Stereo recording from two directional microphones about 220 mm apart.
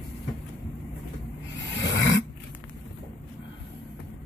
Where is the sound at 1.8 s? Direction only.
55° left (ahead or behind).